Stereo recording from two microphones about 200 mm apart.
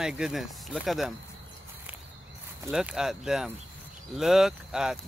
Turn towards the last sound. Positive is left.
turn(degrees=-5)  # may be behind; listen again after turning